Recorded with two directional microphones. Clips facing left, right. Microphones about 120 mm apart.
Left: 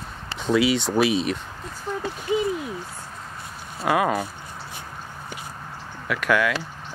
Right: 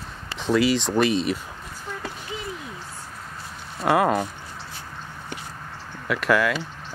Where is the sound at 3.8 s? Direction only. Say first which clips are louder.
Right 2 dB; centre (ahead or behind).